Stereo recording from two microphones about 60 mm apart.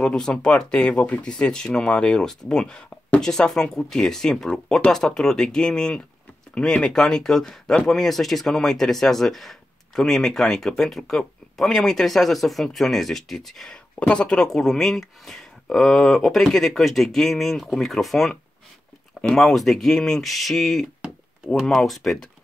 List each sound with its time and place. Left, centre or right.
0.0 s speech: centre
13.9 s speech: centre
14.3 s speech: centre